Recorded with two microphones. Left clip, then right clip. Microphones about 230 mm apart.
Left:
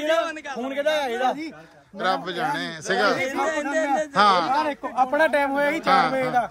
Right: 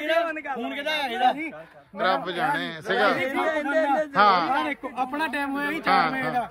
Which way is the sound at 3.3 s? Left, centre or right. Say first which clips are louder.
Even; right.